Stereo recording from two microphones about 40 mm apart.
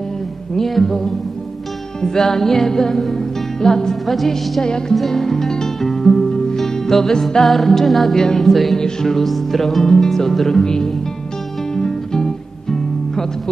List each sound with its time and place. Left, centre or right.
0.6 s music: centre
4.0 s music: centre
4.6 s music: centre
4.9 s music: centre
7.4 s music: centre
10.6 s music: centre